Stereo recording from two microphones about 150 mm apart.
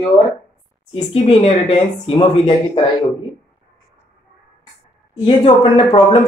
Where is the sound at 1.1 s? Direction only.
35° left (ahead or behind).